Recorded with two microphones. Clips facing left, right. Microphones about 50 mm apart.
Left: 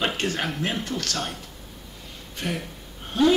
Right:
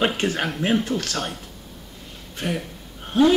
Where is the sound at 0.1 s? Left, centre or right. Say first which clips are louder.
Right 3 dB; centre.